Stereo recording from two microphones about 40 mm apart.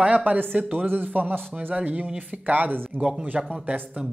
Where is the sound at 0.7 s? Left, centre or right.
Right.